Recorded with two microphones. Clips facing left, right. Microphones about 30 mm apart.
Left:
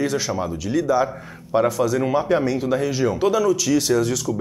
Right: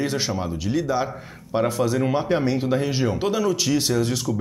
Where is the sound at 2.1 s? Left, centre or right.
Right.